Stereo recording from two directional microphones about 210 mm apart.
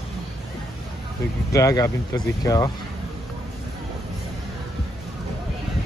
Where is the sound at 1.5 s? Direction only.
15° left (ahead or behind).